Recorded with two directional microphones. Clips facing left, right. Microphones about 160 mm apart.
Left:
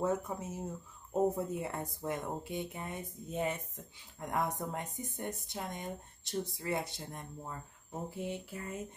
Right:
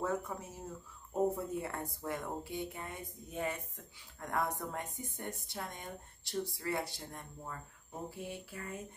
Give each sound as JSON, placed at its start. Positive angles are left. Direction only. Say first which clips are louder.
{"t": 0.0, "sound": "speech", "louder": "left 3 dB", "side_deg": 20}